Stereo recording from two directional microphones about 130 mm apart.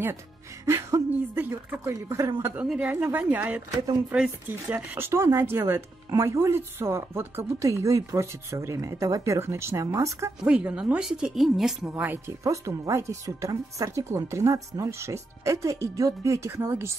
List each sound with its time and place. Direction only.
0.7 s speech: 20° right (ahead or behind)
2.4 s a woman's voice: 10° right (ahead or behind)
10.4 s a woman's voice: 10° right (ahead or behind)
12.4 s speech: 25° right (ahead or behind)